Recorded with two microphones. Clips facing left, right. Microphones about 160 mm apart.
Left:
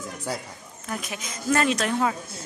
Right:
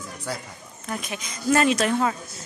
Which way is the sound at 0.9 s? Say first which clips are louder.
Right 1 dB; 5° right (ahead or behind).